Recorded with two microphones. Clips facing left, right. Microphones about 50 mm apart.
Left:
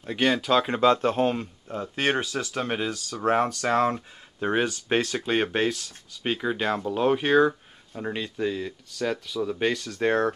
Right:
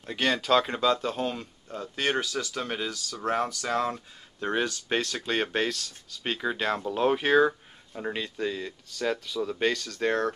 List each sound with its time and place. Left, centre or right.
0.0 s speech: centre
0.7 s speech: left
4.4 s speech: centre
9.9 s speech: centre